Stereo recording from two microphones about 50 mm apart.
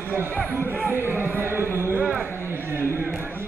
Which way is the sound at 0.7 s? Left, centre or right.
Right.